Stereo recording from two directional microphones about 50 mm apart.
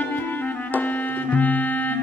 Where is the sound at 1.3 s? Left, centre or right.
Left.